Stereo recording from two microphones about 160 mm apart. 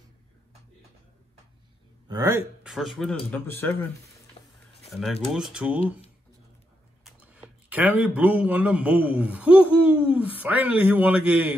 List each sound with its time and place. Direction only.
2.0 s speech: 25° right (ahead or behind)
2.6 s speech: centre (ahead or behind)
5.0 s speech: centre (ahead or behind)
7.1 s speech: 10° right (ahead or behind)